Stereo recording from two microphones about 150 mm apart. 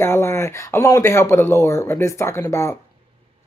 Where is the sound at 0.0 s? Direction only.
15° left (ahead or behind).